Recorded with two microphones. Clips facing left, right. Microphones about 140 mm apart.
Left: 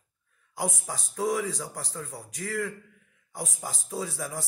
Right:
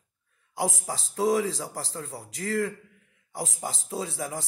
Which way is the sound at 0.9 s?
25° right (ahead or behind).